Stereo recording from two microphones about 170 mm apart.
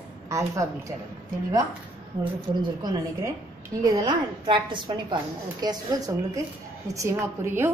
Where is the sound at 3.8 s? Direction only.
25° right (ahead or behind).